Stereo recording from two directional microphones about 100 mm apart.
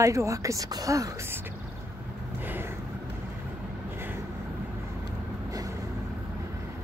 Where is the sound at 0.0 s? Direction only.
30° right (ahead or behind).